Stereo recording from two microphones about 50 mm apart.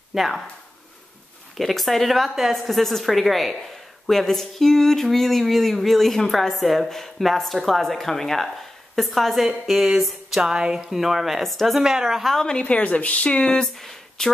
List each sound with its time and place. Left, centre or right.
0.1 s speech: centre
1.6 s speech: centre
10.5 s speech: centre
11.8 s a woman's voice: centre
12.2 s speech: centre
12.6 s speech: left
13.7 s a sound: centre